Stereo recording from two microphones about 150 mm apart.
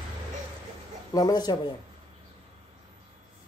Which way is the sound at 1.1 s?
25° left (ahead or behind).